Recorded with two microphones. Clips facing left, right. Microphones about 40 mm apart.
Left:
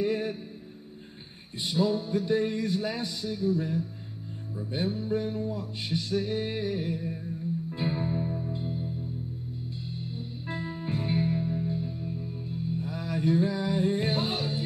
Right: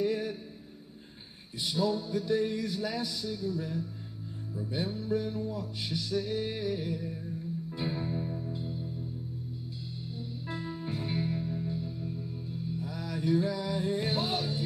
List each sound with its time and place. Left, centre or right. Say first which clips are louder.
0.0 s a sound: left 2 dB; left
1.6 s music: left 3 dB; centre
10.1 s music: left 1 dB; centre